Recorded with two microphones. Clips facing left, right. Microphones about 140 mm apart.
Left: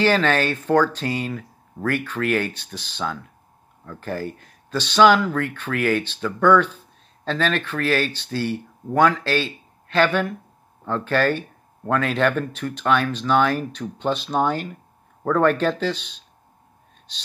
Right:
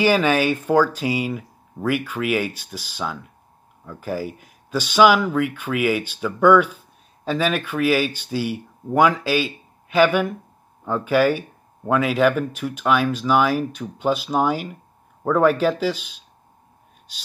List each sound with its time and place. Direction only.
0.0 s speech: 10° right (ahead or behind)